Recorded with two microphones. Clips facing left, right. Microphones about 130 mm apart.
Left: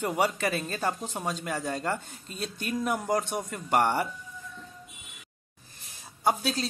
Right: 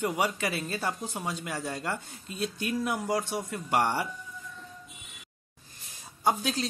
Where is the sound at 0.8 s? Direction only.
15° left (ahead or behind).